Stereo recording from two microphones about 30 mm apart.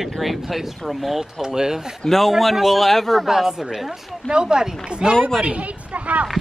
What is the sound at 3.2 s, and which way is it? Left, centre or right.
Speech, centre.